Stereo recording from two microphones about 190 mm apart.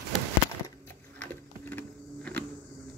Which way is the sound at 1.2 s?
10° left (ahead or behind).